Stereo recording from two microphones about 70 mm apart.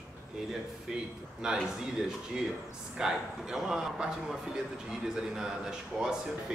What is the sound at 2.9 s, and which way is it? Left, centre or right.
Speech, centre.